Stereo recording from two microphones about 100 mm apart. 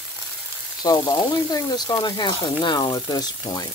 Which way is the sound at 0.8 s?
40° left (ahead or behind).